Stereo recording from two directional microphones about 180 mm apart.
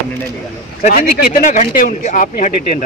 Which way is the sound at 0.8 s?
50° left (ahead or behind).